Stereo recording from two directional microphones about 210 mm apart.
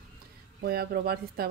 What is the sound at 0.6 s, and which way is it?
Speech, 50° right (ahead or behind).